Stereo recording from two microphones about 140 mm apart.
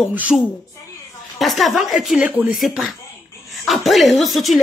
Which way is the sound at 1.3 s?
Centre (ahead or behind).